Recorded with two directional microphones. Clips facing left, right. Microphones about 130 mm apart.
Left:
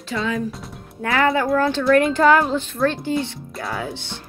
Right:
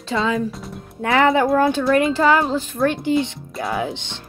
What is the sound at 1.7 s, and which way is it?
Speech, 5° right (ahead or behind).